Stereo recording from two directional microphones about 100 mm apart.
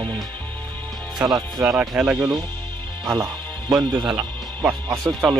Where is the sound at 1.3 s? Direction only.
40° right (ahead or behind).